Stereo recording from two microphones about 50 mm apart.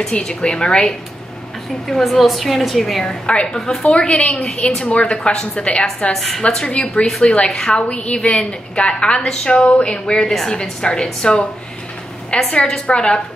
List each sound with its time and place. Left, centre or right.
0.0 s a woman's voice: centre
6.1 s a woman's voice: centre
6.4 s a woman's voice: centre